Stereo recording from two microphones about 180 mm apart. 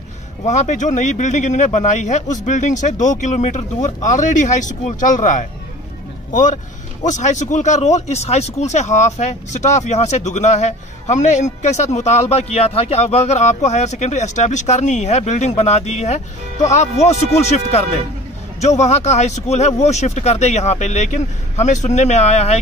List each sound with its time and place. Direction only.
0.5 s speech: 40° left (ahead or behind)